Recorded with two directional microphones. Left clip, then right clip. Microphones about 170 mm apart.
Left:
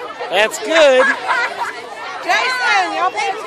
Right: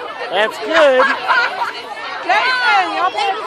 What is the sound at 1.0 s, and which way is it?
Speech, 10° right (ahead or behind).